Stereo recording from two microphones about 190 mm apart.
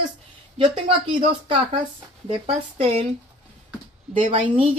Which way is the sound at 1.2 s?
30° right (ahead or behind).